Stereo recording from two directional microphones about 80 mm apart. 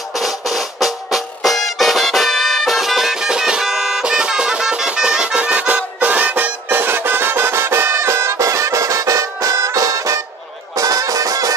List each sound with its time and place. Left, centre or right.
0.2 s music: centre; by 11.5 s right